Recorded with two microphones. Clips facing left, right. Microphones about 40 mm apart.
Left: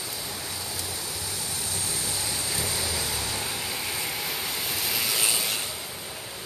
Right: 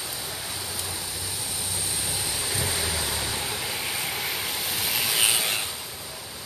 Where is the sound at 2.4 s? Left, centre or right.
Right.